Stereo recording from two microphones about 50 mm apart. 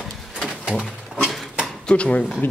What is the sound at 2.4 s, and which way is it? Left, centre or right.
Speech, left.